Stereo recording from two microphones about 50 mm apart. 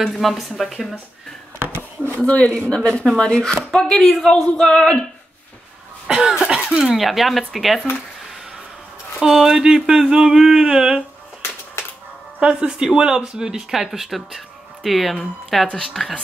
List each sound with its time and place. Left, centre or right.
0.1 s speech: centre
1.6 s a sound: right
2.1 s a man's voice: left
6.0 s cough: centre
6.9 s speech: centre
9.2 s speech: centre
12.4 s speech: centre